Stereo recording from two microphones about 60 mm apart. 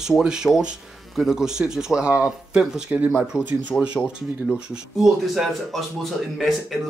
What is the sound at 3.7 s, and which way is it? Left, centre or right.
Speech, left.